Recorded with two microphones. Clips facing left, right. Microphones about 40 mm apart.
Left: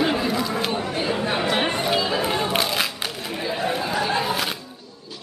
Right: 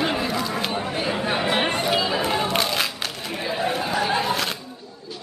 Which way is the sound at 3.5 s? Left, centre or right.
Centre.